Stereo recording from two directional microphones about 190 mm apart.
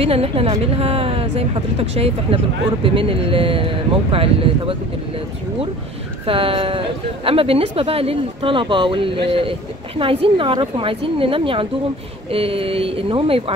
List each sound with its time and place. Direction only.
0.0 s a woman's voice: 30° right (ahead or behind)
6.2 s speech: 30° right (ahead or behind)